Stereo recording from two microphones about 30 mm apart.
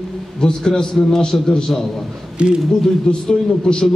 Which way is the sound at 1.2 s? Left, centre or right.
Left.